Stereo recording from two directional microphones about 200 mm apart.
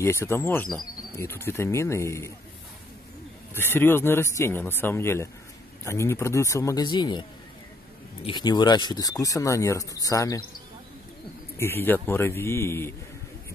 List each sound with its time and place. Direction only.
0.0 s speech: 10° left (ahead or behind)
3.5 s speech: 10° left (ahead or behind)
11.5 s speech: 10° left (ahead or behind)